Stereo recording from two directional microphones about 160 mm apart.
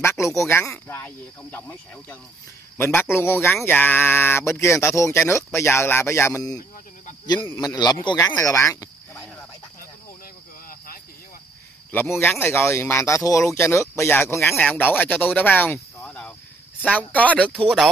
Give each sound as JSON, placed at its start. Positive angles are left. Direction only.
{"t": 0.0, "sound": "speech", "side_deg": 20}
{"t": 8.5, "sound": "cricket", "side_deg": 20}
{"t": 11.9, "sound": "speech", "side_deg": 15}
{"t": 15.3, "sound": "a sound", "side_deg": 10}
{"t": 16.8, "sound": "speech", "side_deg": 10}